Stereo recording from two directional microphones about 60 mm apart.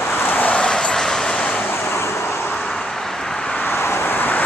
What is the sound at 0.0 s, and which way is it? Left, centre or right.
Vehicle, left.